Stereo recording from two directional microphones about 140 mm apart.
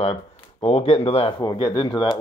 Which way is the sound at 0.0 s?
45° left (ahead or behind).